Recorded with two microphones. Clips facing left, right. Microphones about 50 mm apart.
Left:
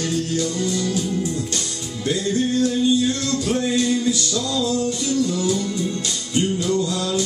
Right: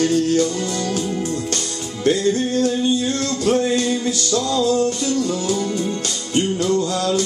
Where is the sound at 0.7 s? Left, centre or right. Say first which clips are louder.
Even; right.